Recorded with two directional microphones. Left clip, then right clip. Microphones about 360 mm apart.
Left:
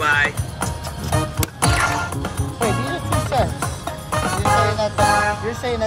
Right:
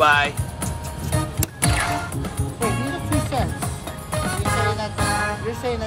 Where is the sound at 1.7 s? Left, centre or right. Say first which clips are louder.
Left 4 dB; centre.